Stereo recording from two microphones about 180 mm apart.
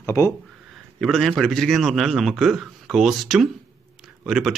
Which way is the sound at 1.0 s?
Centre (ahead or behind).